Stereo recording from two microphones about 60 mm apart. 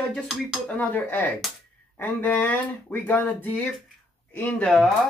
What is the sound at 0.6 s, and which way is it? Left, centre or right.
Speech, left.